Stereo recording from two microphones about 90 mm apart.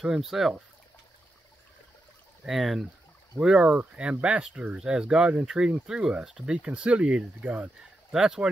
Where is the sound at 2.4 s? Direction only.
Centre (ahead or behind).